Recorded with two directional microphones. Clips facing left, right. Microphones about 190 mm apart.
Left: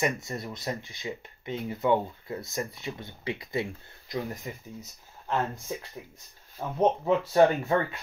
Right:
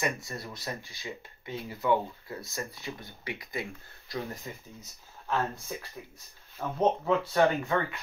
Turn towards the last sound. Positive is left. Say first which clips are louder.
# left 3 dB
turn(degrees=25)  # may be behind; listen again after turning